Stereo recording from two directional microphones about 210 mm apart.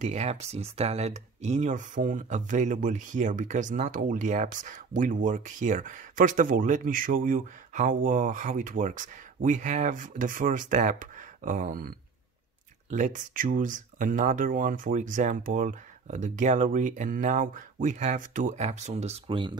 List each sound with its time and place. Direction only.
0.0 s speech: 35° right (ahead or behind)
12.9 s speech: 35° right (ahead or behind)